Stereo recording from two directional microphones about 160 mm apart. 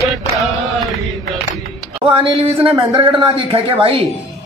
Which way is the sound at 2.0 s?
30° right (ahead or behind).